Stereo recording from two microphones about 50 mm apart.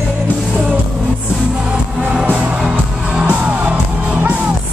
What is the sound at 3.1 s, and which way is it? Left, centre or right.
Music, centre.